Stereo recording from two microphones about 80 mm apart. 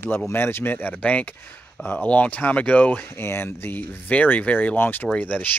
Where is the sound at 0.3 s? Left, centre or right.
Left.